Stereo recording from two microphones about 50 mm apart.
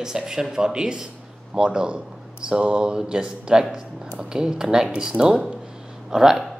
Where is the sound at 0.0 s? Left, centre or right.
Centre.